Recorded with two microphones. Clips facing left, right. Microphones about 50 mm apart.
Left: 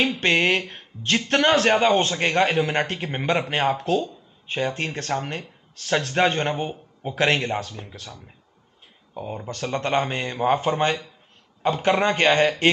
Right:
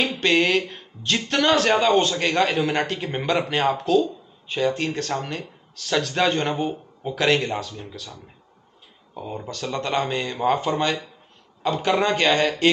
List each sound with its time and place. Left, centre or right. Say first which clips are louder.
0.2 s a man's voice: right 1 dB; left
9.1 s speech: even; centre
9.5 s a man's voice: left 2 dB; left